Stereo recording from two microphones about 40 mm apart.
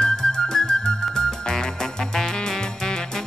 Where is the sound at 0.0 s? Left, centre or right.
Centre.